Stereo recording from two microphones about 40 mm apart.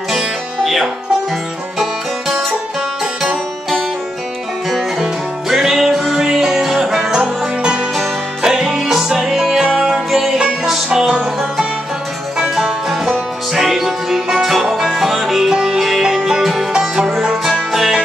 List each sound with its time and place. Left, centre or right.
0.1 s music: centre
4.6 s music: centre
7.1 s music: centre